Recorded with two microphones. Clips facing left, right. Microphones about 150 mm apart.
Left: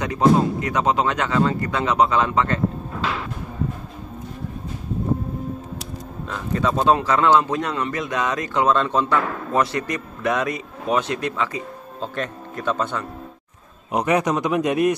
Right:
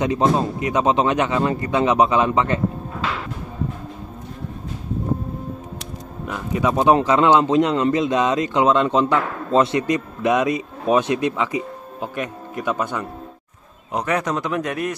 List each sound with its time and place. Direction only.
0.0 s speech: 20° right (ahead or behind)
6.2 s speech: 10° right (ahead or behind)
13.9 s a man's voice: 15° left (ahead or behind)